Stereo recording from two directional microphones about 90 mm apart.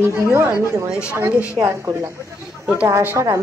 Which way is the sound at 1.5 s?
35° right (ahead or behind).